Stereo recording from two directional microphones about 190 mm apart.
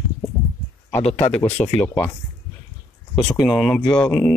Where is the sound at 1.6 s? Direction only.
35° left (ahead or behind).